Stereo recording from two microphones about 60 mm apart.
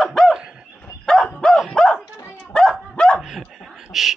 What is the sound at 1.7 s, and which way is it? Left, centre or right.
Bow-wow, centre.